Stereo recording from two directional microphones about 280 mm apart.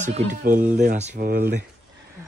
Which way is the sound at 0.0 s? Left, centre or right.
Right.